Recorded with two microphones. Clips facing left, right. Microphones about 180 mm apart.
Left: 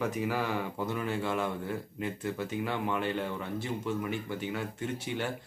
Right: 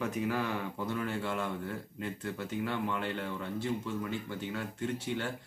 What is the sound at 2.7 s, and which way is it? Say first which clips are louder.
Speech: left 3 dB; 70° left (ahead or behind).